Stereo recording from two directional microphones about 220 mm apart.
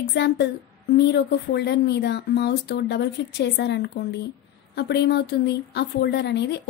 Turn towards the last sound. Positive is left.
turn(degrees=50)  # may be behind; listen again after turning